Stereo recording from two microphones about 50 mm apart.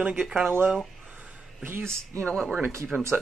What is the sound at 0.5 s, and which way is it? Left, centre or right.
Speech, right.